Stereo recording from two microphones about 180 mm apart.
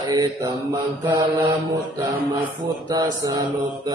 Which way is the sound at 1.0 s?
15° right (ahead or behind).